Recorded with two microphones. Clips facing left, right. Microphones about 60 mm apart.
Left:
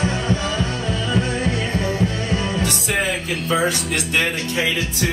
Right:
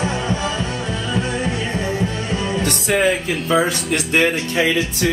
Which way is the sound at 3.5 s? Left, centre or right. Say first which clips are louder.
Right 2 dB; right.